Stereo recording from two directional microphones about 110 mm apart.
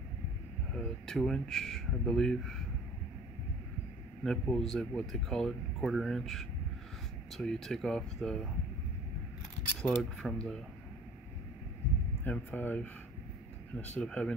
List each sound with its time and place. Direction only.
0.7 s speech: 5° left (ahead or behind)
4.2 s speech: 5° left (ahead or behind)
9.8 s speech: 5° left (ahead or behind)
12.3 s speech: 15° left (ahead or behind)